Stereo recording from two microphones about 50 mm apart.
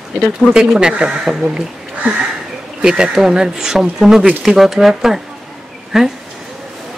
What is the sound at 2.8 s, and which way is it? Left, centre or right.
Speech, centre.